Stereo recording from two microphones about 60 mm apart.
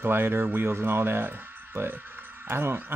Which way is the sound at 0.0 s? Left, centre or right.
Right.